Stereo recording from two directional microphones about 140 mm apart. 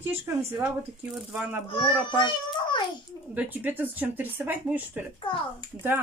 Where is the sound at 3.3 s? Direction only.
10° right (ahead or behind).